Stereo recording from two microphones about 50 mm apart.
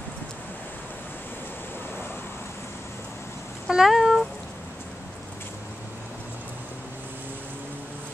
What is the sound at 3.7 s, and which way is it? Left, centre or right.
Cat, centre.